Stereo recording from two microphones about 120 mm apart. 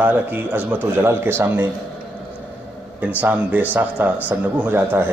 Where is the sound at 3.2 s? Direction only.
15° right (ahead or behind).